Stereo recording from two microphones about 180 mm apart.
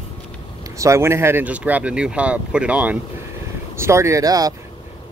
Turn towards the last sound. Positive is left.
turn(degrees=-20)  # may be behind; listen again after turning